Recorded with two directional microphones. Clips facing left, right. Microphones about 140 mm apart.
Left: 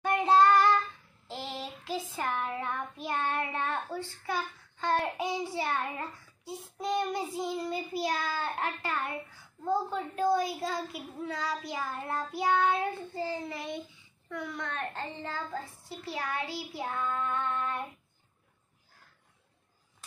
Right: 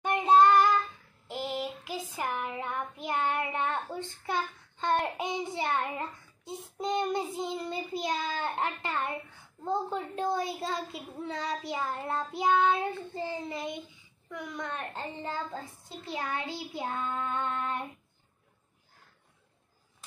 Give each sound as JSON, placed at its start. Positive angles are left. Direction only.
{"t": 0.0, "sound": "child singing", "side_deg": -20}
{"t": 1.2, "sound": "a sound", "side_deg": -15}
{"t": 2.1, "sound": "child singing", "side_deg": -15}
{"t": 14.3, "sound": "speech", "side_deg": -15}
{"t": 16.1, "sound": "child singing", "side_deg": -20}